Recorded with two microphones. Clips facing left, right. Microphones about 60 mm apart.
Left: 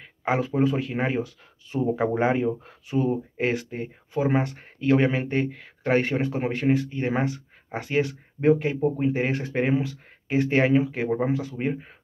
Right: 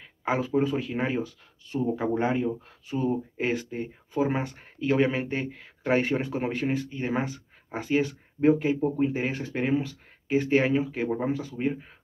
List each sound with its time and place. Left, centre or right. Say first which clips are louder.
0.0 s a sound: left 2 dB; centre
0.7 s speech: left 3 dB; centre
1.7 s speech: left 3 dB; left
2.9 s speech: left 3 dB; centre
10.2 s speech: left 1 dB; centre
11.5 s speech: left 1 dB; centre